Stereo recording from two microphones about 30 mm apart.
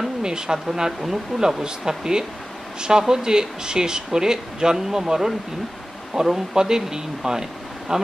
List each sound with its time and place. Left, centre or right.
0.2 s speech: right
1.6 s speech: right